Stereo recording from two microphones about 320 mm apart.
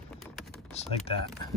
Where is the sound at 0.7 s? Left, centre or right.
Centre.